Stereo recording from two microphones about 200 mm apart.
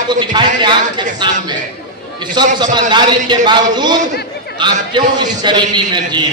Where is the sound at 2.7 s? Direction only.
20° right (ahead or behind).